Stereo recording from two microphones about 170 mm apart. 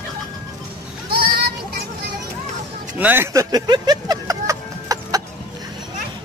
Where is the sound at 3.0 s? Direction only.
10° right (ahead or behind).